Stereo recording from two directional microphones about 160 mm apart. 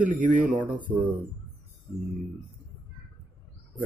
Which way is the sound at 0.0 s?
50° right (ahead or behind).